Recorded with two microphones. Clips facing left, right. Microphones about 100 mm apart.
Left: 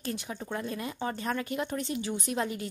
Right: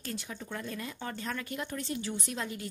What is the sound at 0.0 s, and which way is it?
Speech, 20° left (ahead or behind).